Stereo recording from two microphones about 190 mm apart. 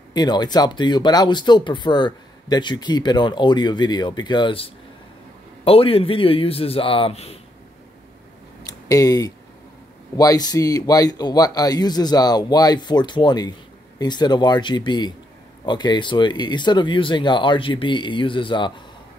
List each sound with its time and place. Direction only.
0.1 s speech: 20° left (ahead or behind)
5.7 s speech: 30° left (ahead or behind)
8.8 s speech: 20° left (ahead or behind)